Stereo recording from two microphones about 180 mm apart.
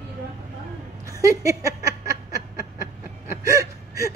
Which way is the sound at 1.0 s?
20° right (ahead or behind).